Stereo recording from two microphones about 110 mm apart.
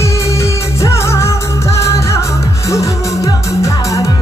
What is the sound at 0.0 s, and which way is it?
Music, 25° left (ahead or behind).